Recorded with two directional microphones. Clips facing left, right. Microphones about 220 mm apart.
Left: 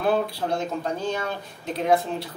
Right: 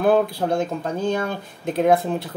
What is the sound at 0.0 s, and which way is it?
Speech, 50° right (ahead or behind).